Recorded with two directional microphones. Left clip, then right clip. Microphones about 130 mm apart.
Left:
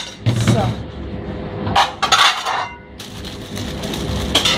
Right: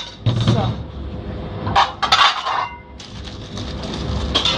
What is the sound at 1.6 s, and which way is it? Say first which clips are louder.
Cutlery: even; 30° left (ahead or behind).